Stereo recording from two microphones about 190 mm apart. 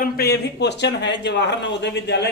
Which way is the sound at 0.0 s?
60° left (ahead or behind).